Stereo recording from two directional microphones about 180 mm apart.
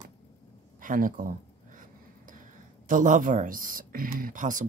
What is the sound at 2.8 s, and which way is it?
Speech, 45° right (ahead or behind).